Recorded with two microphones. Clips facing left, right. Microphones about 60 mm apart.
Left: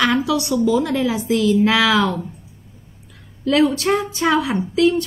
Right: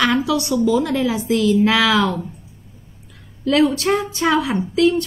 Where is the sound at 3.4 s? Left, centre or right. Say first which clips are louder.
Even; centre.